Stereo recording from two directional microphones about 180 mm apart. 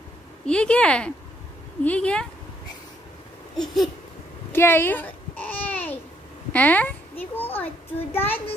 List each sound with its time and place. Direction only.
0.5 s a woman's voice: 5° left (ahead or behind)
3.5 s a woman's voice: centre (ahead or behind)
4.5 s babbling: 10° left (ahead or behind)
6.5 s a child's voice: 10° left (ahead or behind)